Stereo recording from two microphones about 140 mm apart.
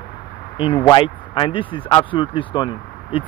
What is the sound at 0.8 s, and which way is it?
Speech, 35° left (ahead or behind).